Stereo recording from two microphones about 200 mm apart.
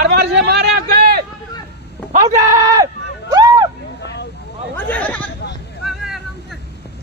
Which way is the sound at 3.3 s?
20° right (ahead or behind).